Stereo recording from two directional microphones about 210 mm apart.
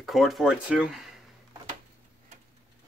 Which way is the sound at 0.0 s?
Centre (ahead or behind).